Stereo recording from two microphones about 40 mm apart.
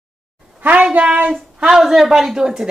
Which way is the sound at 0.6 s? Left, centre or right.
Right.